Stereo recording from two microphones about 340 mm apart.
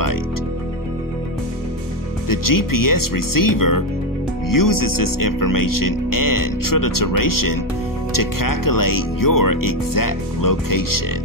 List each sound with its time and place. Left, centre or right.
2.2 s speech: left